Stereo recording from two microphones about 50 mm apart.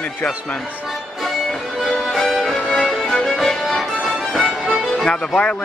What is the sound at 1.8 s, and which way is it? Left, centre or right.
Music, centre.